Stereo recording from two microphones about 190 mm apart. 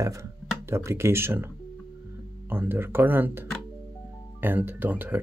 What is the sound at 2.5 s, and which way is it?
Speech, 10° right (ahead or behind).